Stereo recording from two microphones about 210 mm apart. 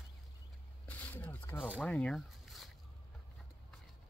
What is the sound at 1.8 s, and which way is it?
Speech, 5° left (ahead or behind).